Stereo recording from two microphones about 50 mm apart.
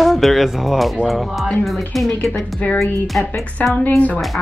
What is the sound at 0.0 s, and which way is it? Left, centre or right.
Speech, centre.